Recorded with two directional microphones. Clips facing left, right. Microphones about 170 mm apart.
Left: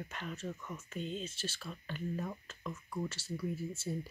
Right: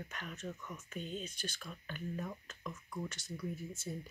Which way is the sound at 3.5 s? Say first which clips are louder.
Left 4 dB; 30° left (ahead or behind).